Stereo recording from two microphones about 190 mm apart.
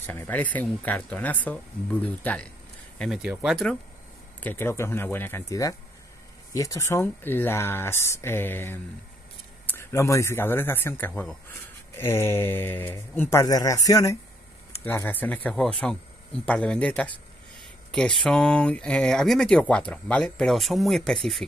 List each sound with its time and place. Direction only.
0.0 s a man's voice: 10° left (ahead or behind)
3.0 s speech: 5° right (ahead or behind)
4.4 s a man's voice: 10° left (ahead or behind)